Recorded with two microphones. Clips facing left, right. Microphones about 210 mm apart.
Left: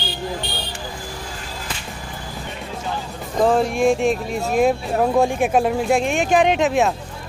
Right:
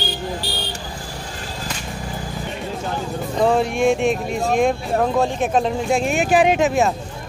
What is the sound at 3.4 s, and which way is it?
Speech, centre (ahead or behind).